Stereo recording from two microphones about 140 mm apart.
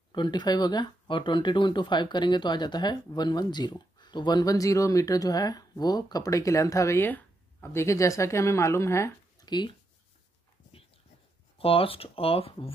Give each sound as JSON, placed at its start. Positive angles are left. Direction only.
{"t": 0.1, "sound": "speech", "side_deg": 30}
{"t": 9.5, "sound": "speech", "side_deg": 30}
{"t": 11.5, "sound": "speech", "side_deg": 40}